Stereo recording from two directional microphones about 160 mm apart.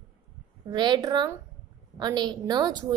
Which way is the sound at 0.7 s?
25° right (ahead or behind).